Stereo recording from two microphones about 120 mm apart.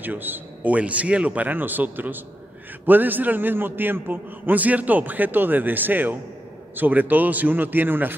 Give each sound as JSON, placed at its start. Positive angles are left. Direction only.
{"t": 0.0, "sound": "a man's voice", "side_deg": -15}